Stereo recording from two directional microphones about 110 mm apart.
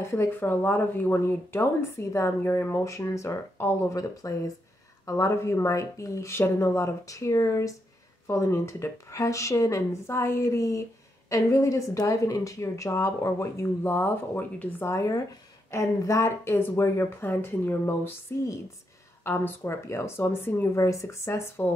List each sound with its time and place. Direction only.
0.0 s speech: 25° left (ahead or behind)